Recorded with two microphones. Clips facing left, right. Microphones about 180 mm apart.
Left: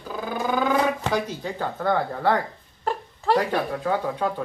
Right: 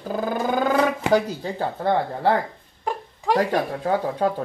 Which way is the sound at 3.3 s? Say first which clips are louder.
Right 1 dB; 15° right (ahead or behind).